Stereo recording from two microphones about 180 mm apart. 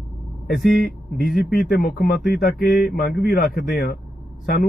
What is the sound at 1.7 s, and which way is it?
Speech, 55° left (ahead or behind).